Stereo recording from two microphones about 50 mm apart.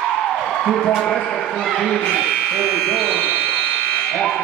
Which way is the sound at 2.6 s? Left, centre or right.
Centre.